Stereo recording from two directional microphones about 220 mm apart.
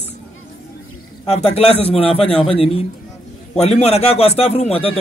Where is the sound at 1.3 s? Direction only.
30° left (ahead or behind).